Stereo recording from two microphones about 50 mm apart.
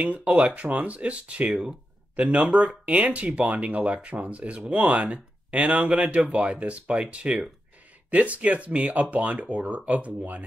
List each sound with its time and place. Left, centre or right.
0.0 s speech: right
1.5 s speech: centre
2.1 s speech: right